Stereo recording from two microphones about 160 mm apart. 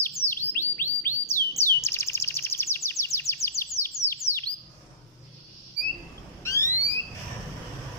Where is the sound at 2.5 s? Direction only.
15° left (ahead or behind).